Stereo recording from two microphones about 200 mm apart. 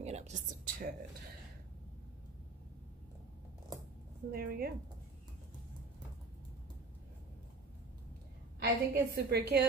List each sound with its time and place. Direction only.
0.0 s a sound: 35° right (ahead or behind)
4.3 s a woman's voice: 50° right (ahead or behind)
8.5 s a woman's voice: 55° right (ahead or behind)